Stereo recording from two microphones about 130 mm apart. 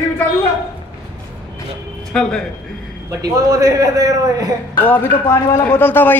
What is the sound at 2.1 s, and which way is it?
Speech, 5° left (ahead or behind).